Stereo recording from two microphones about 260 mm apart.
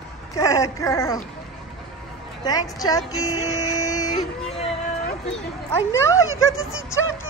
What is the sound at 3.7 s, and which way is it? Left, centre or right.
Music, centre.